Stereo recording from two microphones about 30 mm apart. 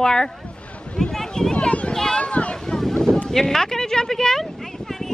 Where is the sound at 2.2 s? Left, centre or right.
Left.